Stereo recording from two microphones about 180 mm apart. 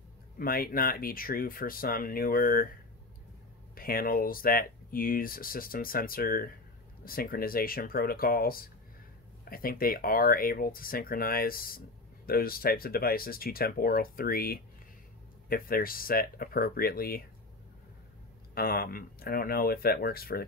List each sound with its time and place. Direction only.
0.4 s speech: 55° left (ahead or behind)
3.7 s speech: 55° left (ahead or behind)
18.5 s speech: 55° left (ahead or behind)